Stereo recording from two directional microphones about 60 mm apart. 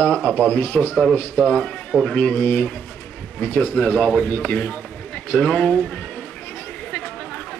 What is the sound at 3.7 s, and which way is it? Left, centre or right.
Speech, left.